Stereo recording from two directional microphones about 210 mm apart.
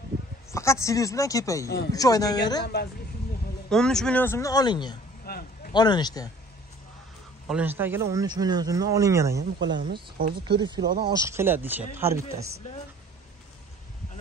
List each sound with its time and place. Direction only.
0.5 s speech: 15° left (ahead or behind)
2.6 s speech: 50° left (ahead or behind)
3.7 s speech: 5° left (ahead or behind); by 4.9 s 20° left (ahead or behind)
5.2 s a sound: 45° left (ahead or behind)
5.7 s speech: 20° left (ahead or behind)
7.4 s speech: 5° right (ahead or behind)
9.4 s speech: 55° right (ahead or behind)
10.6 s speech: 20° right (ahead or behind)